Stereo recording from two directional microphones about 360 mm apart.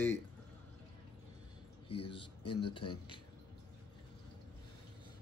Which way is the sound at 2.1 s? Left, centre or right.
Centre.